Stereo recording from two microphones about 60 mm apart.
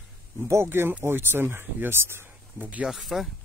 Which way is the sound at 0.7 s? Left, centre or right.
Right.